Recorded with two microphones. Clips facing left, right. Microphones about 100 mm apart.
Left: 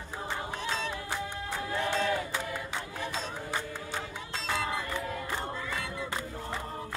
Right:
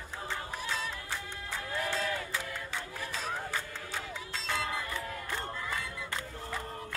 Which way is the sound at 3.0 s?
20° left (ahead or behind).